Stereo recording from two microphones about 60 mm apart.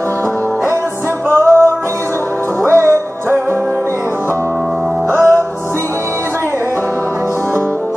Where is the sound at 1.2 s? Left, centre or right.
Right.